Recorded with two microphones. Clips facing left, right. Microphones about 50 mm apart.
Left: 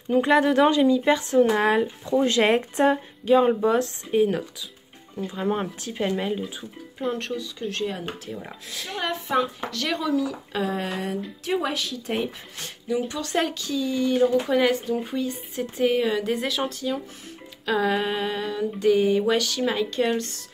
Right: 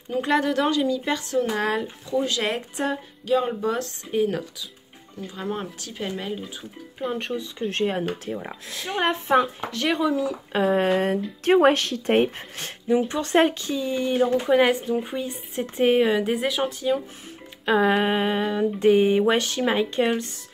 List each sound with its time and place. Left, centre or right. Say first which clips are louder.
0.1 s speech: left 3 dB; centre
2.2 s a woman's voice: left 6 dB; left
3.4 s speech: left 5 dB; centre
7.2 s speech: right 1 dB; centre
7.7 s speech: right 5 dB; right
8.3 s speech: right 4 dB; centre
8.9 s speech: right 4 dB; right
13.1 s speech: right 6 dB; right
16.1 s speech: right 2 dB; centre
17.6 s speech: right 3 dB; right
20.1 s speech: even; centre